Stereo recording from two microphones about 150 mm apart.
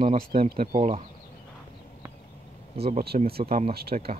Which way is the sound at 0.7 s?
60° right (ahead or behind).